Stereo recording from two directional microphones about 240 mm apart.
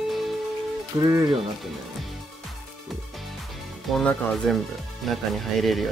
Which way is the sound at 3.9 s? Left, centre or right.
Centre.